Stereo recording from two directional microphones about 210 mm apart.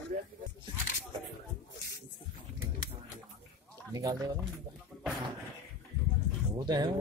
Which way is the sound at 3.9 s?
15° right (ahead or behind).